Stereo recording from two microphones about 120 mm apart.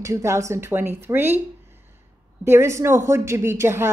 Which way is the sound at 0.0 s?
25° right (ahead or behind).